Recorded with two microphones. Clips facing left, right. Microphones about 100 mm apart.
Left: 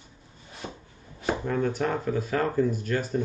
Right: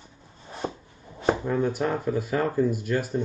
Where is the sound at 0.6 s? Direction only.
35° right (ahead or behind).